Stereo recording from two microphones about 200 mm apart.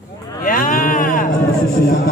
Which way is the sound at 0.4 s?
45° left (ahead or behind).